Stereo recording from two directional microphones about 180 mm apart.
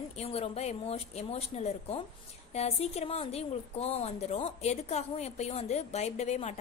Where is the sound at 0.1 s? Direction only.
35° left (ahead or behind).